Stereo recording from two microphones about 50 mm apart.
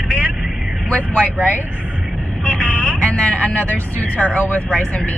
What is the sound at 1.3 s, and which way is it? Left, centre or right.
Speech, right.